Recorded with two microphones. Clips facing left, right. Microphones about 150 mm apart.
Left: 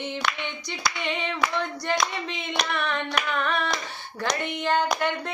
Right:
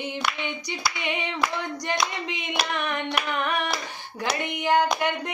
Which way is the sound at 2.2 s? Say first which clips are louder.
Even; 15° right (ahead or behind).